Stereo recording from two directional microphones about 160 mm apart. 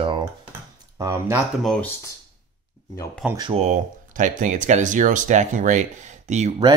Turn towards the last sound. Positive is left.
turn(degrees=-45)  # may be behind; listen again after turning